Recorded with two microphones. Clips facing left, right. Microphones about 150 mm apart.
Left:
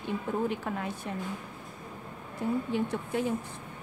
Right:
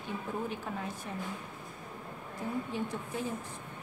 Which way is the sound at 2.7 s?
70° left (ahead or behind).